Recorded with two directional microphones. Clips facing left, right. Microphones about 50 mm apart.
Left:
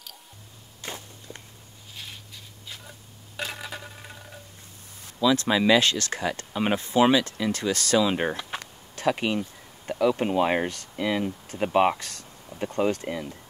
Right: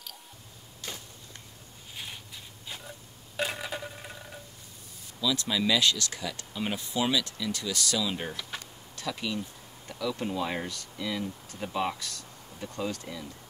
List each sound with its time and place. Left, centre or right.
0.8 s walk: left
2.0 s a sound: centre
3.3 s telephone: centre
5.2 s speech: left